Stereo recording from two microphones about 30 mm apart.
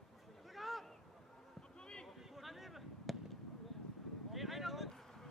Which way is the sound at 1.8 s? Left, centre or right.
Left.